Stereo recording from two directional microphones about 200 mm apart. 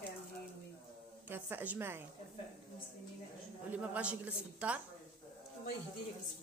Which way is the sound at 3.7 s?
5° right (ahead or behind).